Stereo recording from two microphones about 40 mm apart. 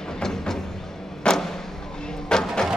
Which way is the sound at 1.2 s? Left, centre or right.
Centre.